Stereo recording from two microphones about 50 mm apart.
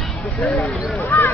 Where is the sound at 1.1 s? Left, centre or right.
Left.